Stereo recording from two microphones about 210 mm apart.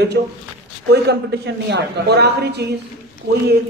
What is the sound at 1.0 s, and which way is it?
A man's voice, 55° right (ahead or behind).